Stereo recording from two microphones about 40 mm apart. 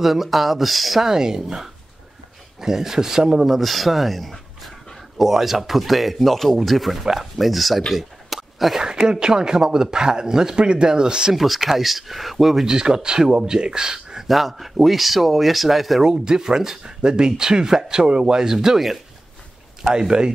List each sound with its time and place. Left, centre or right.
0.0 s speech: centre
1.0 s speech: centre
7.9 s a sound: centre
8.7 s speech: centre
11.3 s speech: centre
12.6 s speech: centre
14.2 s speech: centre
16.0 s speech: centre